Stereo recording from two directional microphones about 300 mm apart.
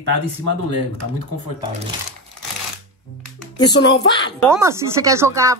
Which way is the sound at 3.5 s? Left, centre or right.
Centre.